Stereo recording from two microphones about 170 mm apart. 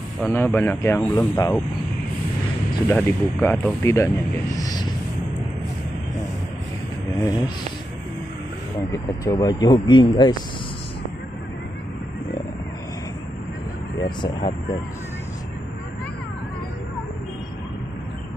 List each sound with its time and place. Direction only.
0.2 s speech: 10° left (ahead or behind)
2.9 s speech: 15° left (ahead or behind)
3.8 s speech: 15° left (ahead or behind)
4.6 s a sound: 25° left (ahead or behind)
7.2 s speech: 20° left (ahead or behind)
8.9 s speech: 20° left (ahead or behind)
13.9 s speech: 25° left (ahead or behind)